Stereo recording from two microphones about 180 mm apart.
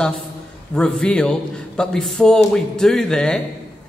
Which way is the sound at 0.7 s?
5° left (ahead or behind).